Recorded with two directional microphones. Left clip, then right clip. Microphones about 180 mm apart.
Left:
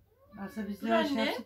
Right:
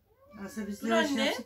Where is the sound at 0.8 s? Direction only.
Centre (ahead or behind).